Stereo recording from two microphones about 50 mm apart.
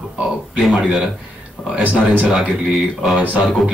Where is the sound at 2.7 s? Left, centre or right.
Centre.